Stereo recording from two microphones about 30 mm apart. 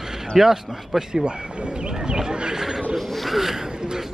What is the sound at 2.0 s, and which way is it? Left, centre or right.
Speech, right.